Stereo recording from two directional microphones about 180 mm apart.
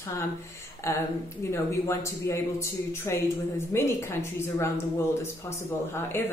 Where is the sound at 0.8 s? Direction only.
15° left (ahead or behind).